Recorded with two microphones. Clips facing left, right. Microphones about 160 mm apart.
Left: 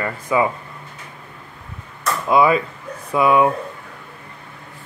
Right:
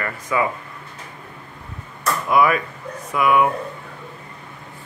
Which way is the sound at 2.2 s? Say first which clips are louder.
Left 3 dB; 25° left (ahead or behind).